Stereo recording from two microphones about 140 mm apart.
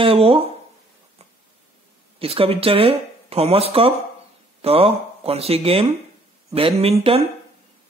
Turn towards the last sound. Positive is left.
turn(degrees=-45)  # may be behind; listen again after turning